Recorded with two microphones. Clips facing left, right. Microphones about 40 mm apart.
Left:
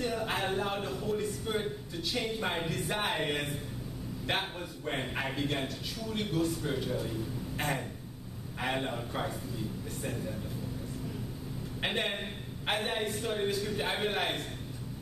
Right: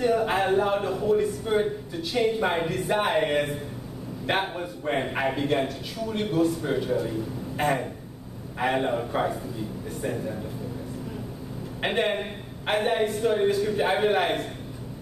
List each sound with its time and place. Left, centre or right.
0.0 s a man's voice: centre
11.8 s a man's voice: centre